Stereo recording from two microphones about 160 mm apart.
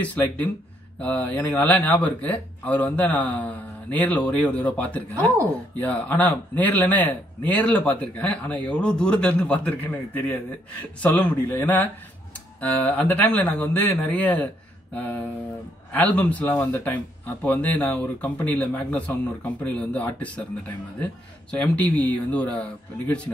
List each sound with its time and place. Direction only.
0.0 s speech: 10° left (ahead or behind)